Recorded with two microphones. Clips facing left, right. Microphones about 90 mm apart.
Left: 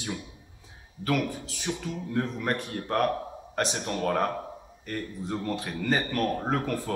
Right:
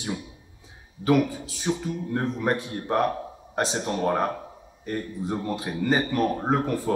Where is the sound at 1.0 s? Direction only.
20° right (ahead or behind).